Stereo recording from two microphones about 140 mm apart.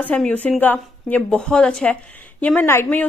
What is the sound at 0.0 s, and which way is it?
A woman's voice, 10° left (ahead or behind).